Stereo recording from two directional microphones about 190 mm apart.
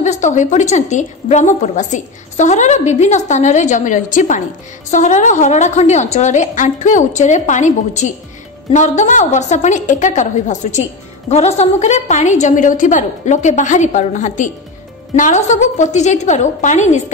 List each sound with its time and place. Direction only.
0.0 s a woman's voice: 40° left (ahead or behind)